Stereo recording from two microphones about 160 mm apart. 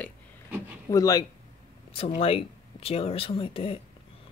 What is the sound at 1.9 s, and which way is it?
Speech, 35° left (ahead or behind).